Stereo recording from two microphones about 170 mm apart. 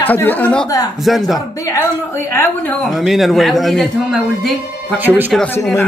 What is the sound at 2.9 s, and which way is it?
Speech, centre (ahead or behind).